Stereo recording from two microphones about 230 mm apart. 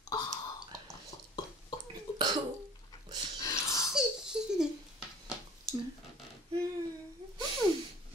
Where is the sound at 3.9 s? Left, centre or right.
Centre.